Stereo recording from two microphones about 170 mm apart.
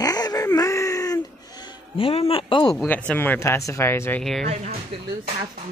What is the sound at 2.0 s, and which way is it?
Speech, 35° left (ahead or behind).